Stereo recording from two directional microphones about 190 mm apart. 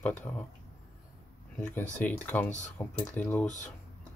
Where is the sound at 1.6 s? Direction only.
5° left (ahead or behind).